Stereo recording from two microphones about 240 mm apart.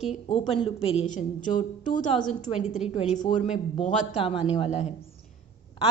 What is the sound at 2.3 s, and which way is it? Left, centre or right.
A woman's voice, left.